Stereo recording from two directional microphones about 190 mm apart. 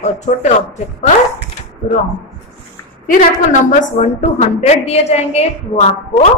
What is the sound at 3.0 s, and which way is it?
A woman's voice, 40° left (ahead or behind).